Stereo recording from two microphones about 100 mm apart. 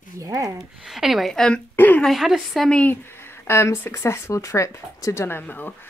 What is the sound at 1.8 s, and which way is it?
Speech, 20° left (ahead or behind).